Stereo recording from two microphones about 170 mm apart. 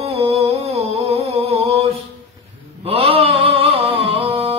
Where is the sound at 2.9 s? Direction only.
35° right (ahead or behind).